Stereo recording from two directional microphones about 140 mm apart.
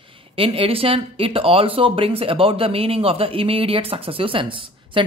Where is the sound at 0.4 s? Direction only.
40° right (ahead or behind).